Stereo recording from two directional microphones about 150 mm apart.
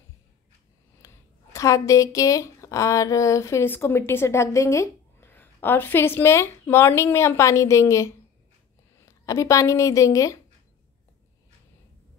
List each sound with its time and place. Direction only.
1.0 s a woman's voice: 20° left (ahead or behind)